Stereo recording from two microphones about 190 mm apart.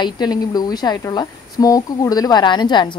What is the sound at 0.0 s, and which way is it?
A woman's voice, 20° left (ahead or behind).